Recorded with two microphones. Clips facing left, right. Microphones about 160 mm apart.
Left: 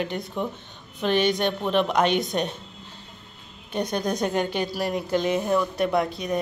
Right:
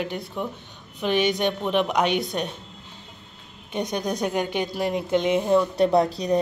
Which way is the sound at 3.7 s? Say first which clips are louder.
Left 1 dB; 15° right (ahead or behind).